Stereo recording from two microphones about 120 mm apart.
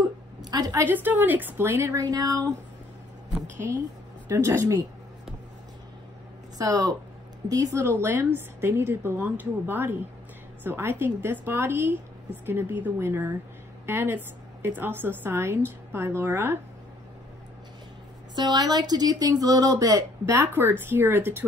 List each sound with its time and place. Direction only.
0.4 s a sound: 35° right (ahead or behind)
0.8 s a woman's voice: 15° right (ahead or behind); by 2.5 s 30° right (ahead or behind)
3.5 s a woman's voice: 25° right (ahead or behind)
6.6 s a woman's voice: 30° right (ahead or behind)
18.3 s a woman's voice: 35° right (ahead or behind); by 21.5 s 15° right (ahead or behind)